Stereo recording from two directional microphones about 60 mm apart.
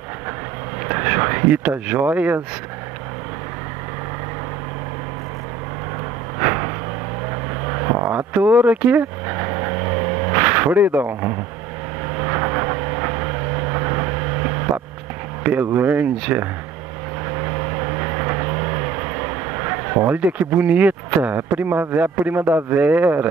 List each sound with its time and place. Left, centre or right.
0.8 s speech: right
6.4 s vehicle: right
7.7 s a sound: right
8.3 s vehicle: right
15.4 s speech: right
17.9 s vehicle: right
19.2 s speech: right